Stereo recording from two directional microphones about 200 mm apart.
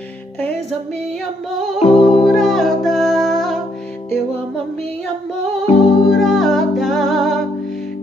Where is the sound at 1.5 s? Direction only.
Centre (ahead or behind).